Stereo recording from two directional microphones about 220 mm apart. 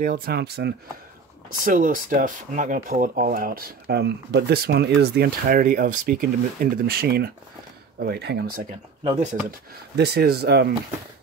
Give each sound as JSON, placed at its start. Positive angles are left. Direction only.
{"t": 0.0, "sound": "speech", "side_deg": -40}
{"t": 9.0, "sound": "speech", "side_deg": -35}
{"t": 9.9, "sound": "speech", "side_deg": -50}